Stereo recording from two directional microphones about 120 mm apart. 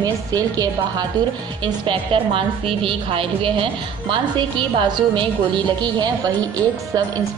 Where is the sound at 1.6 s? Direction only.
45° right (ahead or behind).